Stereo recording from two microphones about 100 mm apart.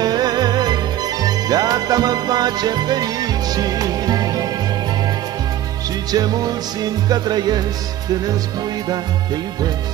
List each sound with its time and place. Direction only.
0.0 s music: 40° right (ahead or behind)
6.1 s music: 40° right (ahead or behind)
8.8 s music: 40° right (ahead or behind)